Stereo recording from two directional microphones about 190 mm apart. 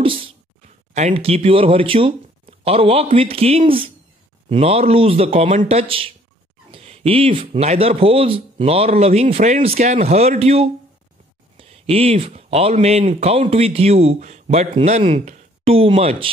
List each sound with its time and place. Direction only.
0.9 s speech: 35° right (ahead or behind)